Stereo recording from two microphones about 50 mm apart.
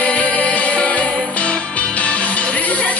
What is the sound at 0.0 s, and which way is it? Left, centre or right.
Music, left.